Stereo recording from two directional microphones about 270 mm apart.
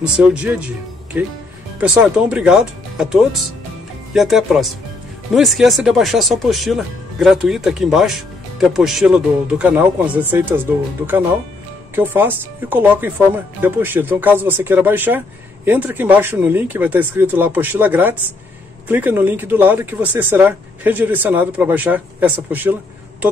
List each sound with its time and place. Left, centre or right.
0.0 s speech: centre
11.9 s speech: centre